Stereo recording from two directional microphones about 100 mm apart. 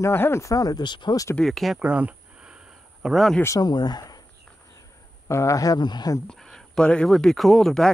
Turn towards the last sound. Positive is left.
turn(degrees=5)  # may be behind; listen again after turning